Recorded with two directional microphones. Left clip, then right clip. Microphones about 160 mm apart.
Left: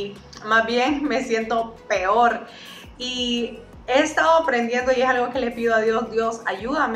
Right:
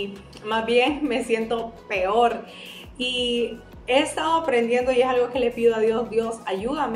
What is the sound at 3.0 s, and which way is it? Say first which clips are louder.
Speech: right 1 dB; 35° right (ahead or behind).